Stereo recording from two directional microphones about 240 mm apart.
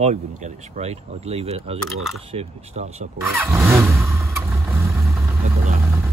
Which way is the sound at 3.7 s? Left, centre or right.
Centre.